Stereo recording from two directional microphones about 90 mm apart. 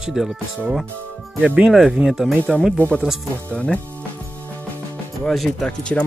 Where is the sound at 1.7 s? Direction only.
5° right (ahead or behind).